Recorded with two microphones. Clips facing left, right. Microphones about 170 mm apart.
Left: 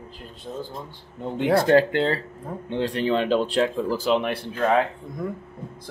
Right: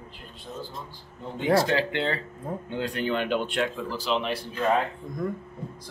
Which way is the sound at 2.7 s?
30° left (ahead or behind).